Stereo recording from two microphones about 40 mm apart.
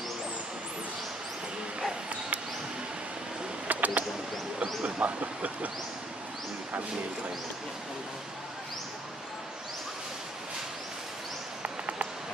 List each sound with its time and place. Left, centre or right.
3.6 s bird: right
4.8 s speech: right
11.6 s a sound: right